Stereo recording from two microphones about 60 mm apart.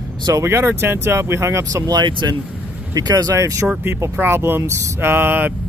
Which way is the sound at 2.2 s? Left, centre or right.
Right.